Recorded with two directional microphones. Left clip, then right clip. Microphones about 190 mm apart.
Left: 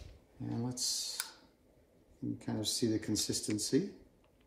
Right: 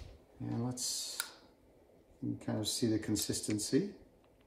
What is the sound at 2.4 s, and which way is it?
Speech, centre (ahead or behind).